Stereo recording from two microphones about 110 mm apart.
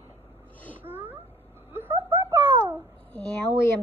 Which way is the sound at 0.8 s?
20° right (ahead or behind).